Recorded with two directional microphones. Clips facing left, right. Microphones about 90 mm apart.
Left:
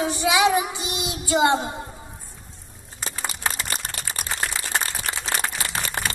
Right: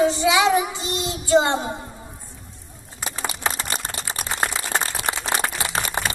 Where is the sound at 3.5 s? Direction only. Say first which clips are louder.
Right 2 dB; 30° right (ahead or behind).